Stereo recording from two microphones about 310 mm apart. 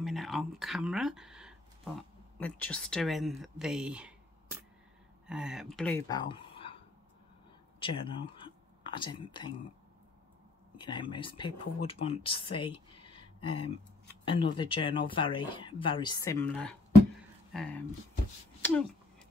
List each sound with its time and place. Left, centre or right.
0.0 s speech: centre
7.8 s speech: centre
10.8 s speech: centre
18.6 s a sound: centre